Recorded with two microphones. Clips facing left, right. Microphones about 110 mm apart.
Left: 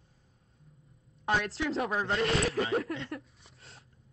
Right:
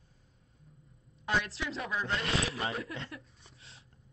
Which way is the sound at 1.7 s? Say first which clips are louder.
Left 6 dB; 35° left (ahead or behind).